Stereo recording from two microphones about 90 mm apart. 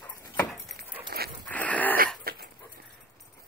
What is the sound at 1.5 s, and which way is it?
Wheeze, 15° left (ahead or behind).